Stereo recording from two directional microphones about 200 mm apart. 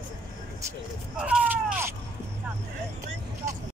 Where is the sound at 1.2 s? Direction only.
5° right (ahead or behind).